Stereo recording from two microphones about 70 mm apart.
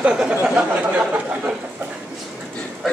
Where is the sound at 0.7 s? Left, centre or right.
Centre.